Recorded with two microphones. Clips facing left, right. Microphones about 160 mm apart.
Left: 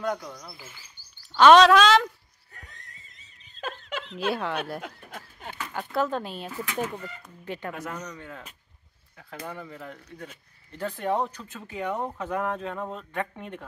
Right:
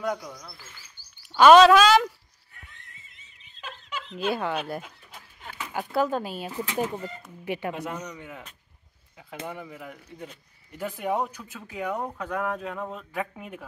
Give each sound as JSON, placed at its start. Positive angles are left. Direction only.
{"t": 0.0, "sound": "speech", "side_deg": -10}
{"t": 0.4, "sound": "speech", "side_deg": 10}
{"t": 1.3, "sound": "speech", "side_deg": -5}
{"t": 2.5, "sound": "neigh", "side_deg": 40}
{"t": 3.6, "sound": "laughter", "side_deg": 45}
{"t": 4.3, "sound": "speech", "side_deg": 0}
{"t": 4.8, "sound": "speech", "side_deg": 60}
{"t": 5.6, "sound": "speech", "side_deg": -10}
{"t": 6.5, "sound": "speech", "side_deg": -20}